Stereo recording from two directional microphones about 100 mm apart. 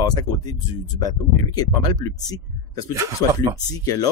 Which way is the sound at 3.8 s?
35° left (ahead or behind).